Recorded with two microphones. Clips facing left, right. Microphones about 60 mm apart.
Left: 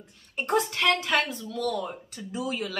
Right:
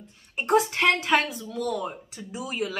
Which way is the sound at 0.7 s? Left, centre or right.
Right.